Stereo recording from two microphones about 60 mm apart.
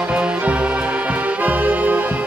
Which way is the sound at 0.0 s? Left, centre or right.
Centre.